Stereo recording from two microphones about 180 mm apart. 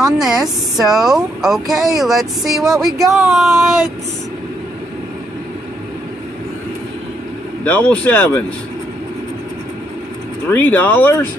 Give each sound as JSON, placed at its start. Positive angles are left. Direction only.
{"t": 0.0, "sound": "speech", "side_deg": -5}
{"t": 7.6, "sound": "speech", "side_deg": 10}
{"t": 10.5, "sound": "speech", "side_deg": 10}